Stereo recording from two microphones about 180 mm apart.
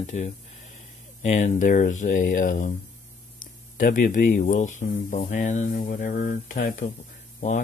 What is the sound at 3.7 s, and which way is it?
Speech, 50° left (ahead or behind).